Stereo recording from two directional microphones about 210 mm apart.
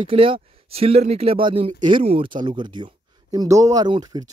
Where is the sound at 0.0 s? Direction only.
25° right (ahead or behind).